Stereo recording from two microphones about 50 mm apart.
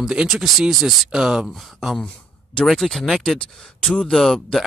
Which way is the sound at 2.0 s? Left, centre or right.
Left.